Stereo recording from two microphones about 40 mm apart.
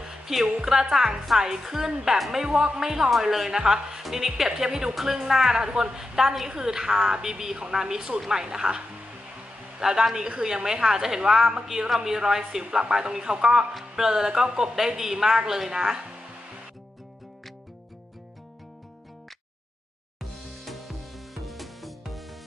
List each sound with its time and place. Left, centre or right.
0.0 s music: centre
0.6 s a woman's voice: centre
2.4 s a woman's voice: centre
5.7 s a woman's voice: right
5.9 s a woman's voice: centre
20.2 s music: centre